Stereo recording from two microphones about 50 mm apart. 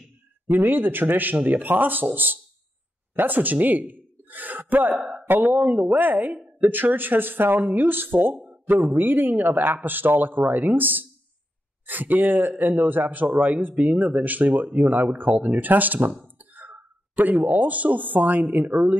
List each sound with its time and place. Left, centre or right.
0.5 s speech: right